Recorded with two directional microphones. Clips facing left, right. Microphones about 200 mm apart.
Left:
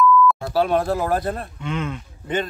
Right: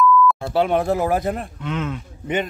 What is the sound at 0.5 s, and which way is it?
A man's voice, 20° right (ahead or behind).